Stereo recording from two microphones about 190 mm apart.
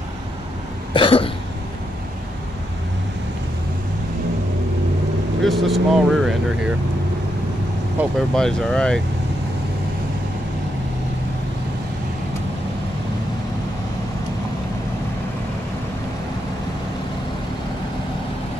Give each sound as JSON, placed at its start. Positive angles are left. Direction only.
{"t": 0.9, "sound": "cough", "side_deg": 30}
{"t": 5.4, "sound": "speech", "side_deg": 0}
{"t": 8.0, "sound": "speech", "side_deg": -10}
{"t": 8.4, "sound": "speech", "side_deg": 5}